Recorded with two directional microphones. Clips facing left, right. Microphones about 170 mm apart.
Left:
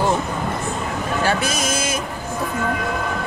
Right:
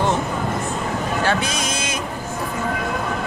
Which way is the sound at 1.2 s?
5° left (ahead or behind).